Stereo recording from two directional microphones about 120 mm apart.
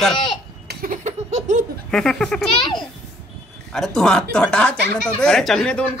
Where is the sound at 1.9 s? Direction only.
5° left (ahead or behind).